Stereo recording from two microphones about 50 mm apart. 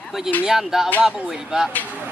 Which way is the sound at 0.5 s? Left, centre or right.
Centre.